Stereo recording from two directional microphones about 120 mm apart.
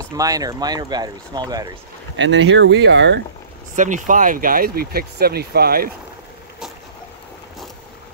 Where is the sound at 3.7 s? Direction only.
90° right.